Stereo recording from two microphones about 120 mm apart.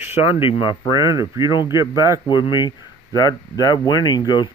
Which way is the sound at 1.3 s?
25° right (ahead or behind).